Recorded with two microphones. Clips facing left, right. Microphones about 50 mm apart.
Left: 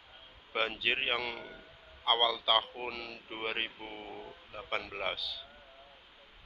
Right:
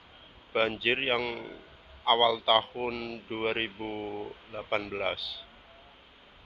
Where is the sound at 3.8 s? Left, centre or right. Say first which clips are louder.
Right 8 dB; right.